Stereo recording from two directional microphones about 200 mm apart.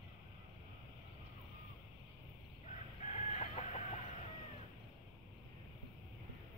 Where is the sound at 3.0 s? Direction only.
30° left (ahead or behind).